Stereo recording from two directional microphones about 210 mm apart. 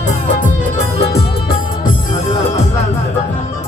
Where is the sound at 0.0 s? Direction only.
35° left (ahead or behind).